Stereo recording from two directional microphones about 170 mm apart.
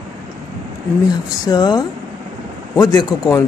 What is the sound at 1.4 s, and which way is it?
A man's voice, 25° left (ahead or behind).